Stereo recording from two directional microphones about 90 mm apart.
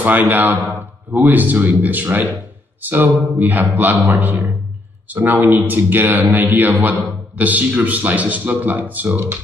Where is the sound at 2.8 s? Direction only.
20° right (ahead or behind).